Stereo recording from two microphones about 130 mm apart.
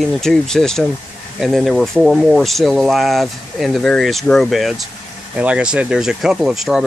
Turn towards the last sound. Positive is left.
turn(degrees=-5)  # may be behind; listen again after turning